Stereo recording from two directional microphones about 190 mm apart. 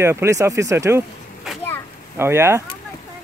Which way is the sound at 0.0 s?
15° right (ahead or behind).